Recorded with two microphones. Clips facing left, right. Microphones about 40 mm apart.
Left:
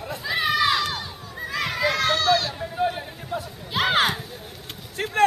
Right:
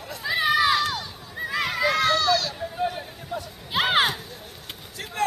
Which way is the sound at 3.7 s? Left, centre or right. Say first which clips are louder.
Even; centre.